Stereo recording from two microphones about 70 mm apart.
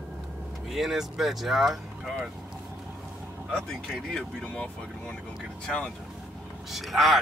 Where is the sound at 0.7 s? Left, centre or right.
Centre.